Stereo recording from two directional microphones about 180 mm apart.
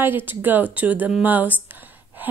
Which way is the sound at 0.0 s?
10° right (ahead or behind).